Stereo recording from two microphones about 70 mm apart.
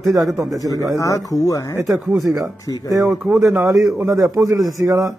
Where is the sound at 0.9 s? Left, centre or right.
Left.